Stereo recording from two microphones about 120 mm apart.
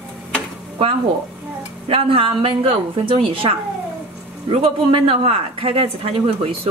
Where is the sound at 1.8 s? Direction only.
50° right (ahead or behind).